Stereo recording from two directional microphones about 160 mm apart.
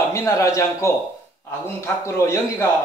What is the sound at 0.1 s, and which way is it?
A man's voice, 20° left (ahead or behind).